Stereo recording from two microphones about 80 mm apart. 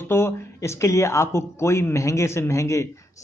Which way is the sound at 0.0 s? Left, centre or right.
Left.